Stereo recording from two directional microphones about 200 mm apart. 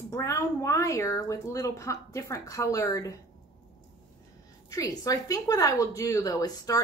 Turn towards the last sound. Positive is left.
turn(degrees=20)  # may be behind; listen again after turning